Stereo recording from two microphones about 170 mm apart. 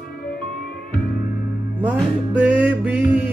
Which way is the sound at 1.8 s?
10° right (ahead or behind).